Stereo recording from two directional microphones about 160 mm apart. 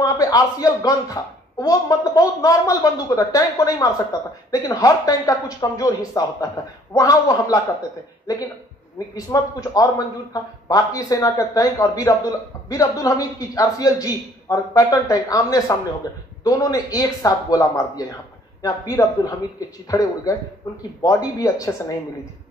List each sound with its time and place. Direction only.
0.0 s a man's voice: 20° left (ahead or behind)
9.1 s a man's voice: 20° left (ahead or behind)